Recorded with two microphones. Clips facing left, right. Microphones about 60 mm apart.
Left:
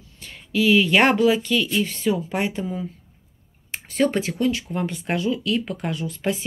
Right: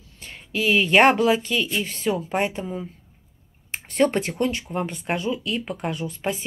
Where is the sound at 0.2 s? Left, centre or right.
Right.